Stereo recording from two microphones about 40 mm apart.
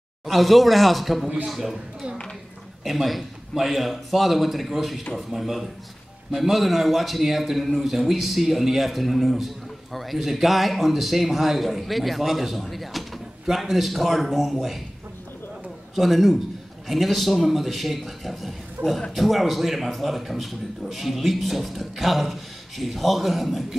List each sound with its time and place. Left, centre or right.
0.3 s a man's voice: centre
15.9 s a man's voice: centre
18.8 s a man's voice: right
19.1 s a man's voice: centre